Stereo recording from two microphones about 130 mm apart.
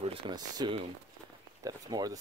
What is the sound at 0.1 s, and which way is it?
Speech, 35° right (ahead or behind).